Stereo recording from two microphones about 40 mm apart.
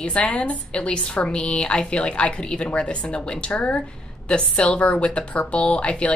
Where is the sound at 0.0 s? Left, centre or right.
Left.